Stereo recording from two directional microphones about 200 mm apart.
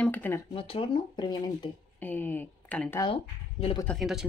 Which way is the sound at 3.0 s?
30° left (ahead or behind).